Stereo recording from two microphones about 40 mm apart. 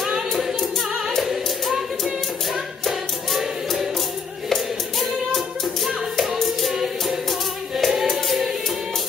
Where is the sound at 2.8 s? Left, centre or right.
Centre.